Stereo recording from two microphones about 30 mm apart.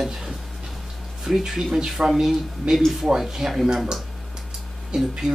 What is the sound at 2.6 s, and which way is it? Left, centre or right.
Speech, right.